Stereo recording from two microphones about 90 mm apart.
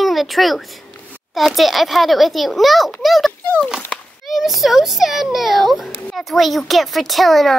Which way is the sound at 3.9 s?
10° left (ahead or behind).